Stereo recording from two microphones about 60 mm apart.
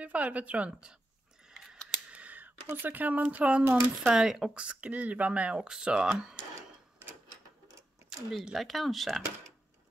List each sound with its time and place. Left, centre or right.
0.0 s speech: right
1.5 s a sound: centre
2.0 s a sound: right
2.7 s speech: right
4.1 s speech: centre
4.6 s speech: right
8.1 s speech: centre